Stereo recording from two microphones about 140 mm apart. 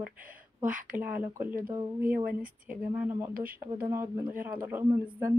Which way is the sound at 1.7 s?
25° right (ahead or behind).